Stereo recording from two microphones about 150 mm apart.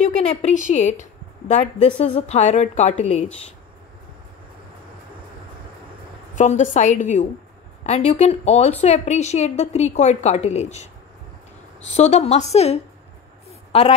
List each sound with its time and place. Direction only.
0.1 s a woman's voice: 50° left (ahead or behind)
6.3 s a woman's voice: 55° left (ahead or behind)
11.9 s a woman's voice: 45° left (ahead or behind)
13.5 s a sound: 45° left (ahead or behind)